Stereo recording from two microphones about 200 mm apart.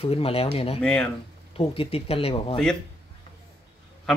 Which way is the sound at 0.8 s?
5° left (ahead or behind).